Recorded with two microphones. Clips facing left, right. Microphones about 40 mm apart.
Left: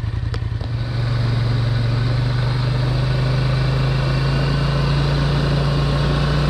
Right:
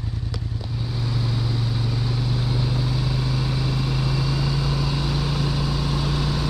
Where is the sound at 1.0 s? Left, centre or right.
Left.